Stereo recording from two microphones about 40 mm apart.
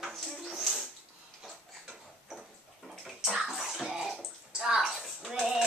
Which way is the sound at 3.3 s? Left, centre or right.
Centre.